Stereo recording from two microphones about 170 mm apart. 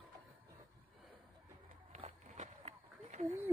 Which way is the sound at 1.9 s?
35° right (ahead or behind).